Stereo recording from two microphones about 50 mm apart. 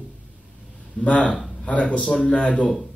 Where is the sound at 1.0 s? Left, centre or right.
Left.